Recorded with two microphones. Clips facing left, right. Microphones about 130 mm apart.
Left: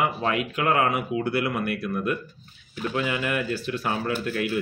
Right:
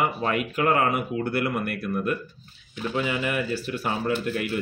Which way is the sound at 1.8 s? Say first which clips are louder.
Even; centre (ahead or behind).